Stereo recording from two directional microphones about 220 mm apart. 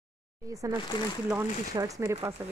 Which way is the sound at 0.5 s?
15° right (ahead or behind).